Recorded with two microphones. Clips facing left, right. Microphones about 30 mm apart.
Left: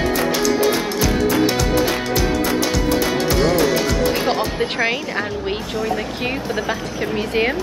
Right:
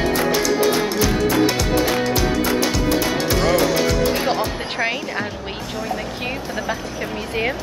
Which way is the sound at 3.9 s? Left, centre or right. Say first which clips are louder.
Even; centre.